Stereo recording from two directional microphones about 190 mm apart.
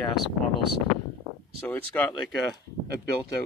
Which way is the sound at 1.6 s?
10° left (ahead or behind).